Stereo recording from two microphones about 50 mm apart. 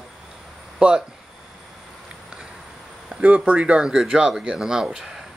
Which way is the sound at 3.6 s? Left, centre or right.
Centre.